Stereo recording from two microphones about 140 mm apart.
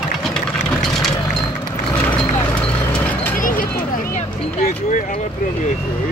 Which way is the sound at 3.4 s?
85° left.